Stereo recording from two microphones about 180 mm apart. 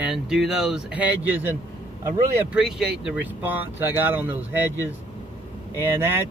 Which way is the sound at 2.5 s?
5° right (ahead or behind).